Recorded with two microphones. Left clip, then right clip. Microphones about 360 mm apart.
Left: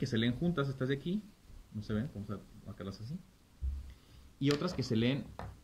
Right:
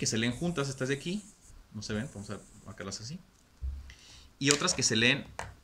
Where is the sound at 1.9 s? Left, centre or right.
Right.